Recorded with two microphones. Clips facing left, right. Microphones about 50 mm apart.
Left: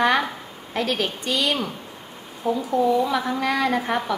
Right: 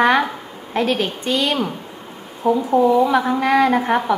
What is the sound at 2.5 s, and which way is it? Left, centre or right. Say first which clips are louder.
A woman's voice: right 6 dB; right.